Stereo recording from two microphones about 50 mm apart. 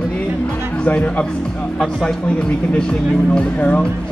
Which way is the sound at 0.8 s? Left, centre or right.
Left.